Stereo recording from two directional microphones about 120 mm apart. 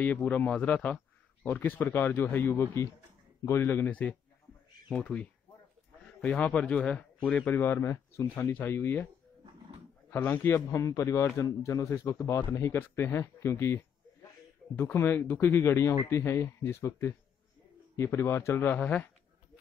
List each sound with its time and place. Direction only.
0.0 s a man's voice: 15° left (ahead or behind)
10.1 s a man's voice: 15° left (ahead or behind)